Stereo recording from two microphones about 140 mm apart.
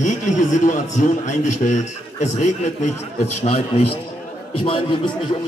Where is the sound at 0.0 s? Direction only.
60° left (ahead or behind); by 5.4 s 35° left (ahead or behind).